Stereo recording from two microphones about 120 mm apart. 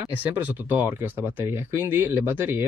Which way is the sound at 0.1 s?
15° right (ahead or behind).